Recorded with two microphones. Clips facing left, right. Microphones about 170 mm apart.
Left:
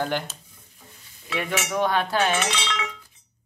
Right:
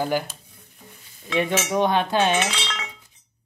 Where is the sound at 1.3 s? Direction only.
20° right (ahead or behind).